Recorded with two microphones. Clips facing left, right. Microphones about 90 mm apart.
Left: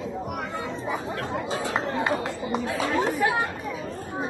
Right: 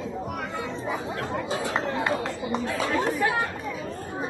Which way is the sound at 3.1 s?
25° left (ahead or behind).